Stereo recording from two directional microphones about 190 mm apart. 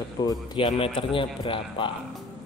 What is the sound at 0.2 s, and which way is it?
A man's voice, 20° left (ahead or behind).